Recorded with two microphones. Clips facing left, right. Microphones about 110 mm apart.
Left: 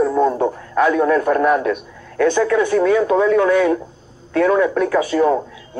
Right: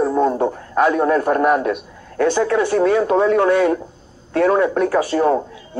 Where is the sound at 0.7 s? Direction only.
30° right (ahead or behind).